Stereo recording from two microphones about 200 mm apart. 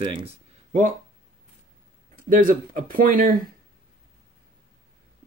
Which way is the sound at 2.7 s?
45° right (ahead or behind).